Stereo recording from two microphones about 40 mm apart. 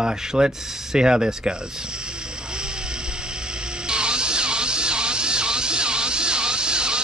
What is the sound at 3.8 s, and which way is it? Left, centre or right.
Music, right.